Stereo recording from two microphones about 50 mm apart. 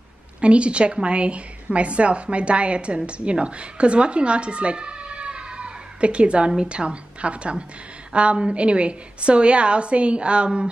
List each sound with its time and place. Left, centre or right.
0.4 s a woman's voice: right